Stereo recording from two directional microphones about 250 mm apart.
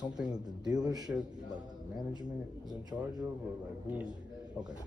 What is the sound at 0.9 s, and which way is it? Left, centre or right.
Speech, centre.